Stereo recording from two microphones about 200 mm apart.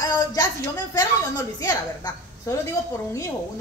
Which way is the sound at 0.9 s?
15° left (ahead or behind).